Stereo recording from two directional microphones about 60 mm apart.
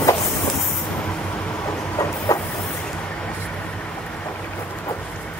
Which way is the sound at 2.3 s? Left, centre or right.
Left.